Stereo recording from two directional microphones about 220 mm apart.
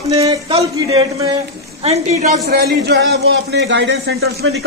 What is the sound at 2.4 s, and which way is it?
A man's voice, 50° right (ahead or behind).